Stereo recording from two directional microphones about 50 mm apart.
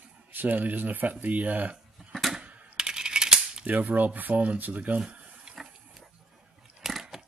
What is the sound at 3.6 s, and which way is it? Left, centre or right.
Speech, right.